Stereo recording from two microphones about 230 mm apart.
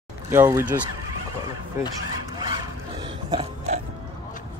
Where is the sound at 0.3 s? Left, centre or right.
Centre.